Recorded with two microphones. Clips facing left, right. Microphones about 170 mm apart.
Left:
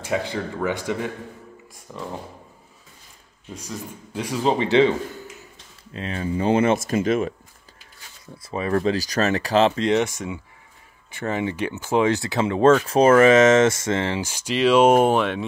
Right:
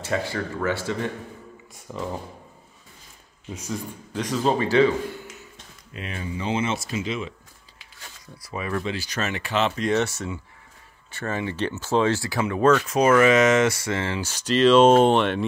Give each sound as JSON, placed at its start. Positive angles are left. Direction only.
{"t": 0.0, "sound": "speech", "side_deg": 15}
{"t": 1.9, "sound": "speech", "side_deg": -5}
{"t": 4.1, "sound": "speech", "side_deg": 10}
{"t": 5.9, "sound": "speech", "side_deg": 35}
{"t": 8.4, "sound": "speech", "side_deg": 30}
{"t": 9.8, "sound": "speech", "side_deg": 15}